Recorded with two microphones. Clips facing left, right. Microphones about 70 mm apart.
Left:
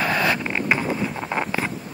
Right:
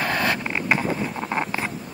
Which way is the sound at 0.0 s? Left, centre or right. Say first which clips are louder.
Left 2 dB; centre.